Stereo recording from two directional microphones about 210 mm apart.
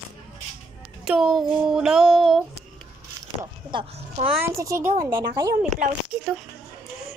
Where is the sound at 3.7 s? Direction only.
25° right (ahead or behind).